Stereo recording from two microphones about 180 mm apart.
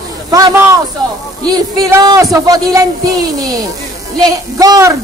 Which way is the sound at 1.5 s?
20° right (ahead or behind).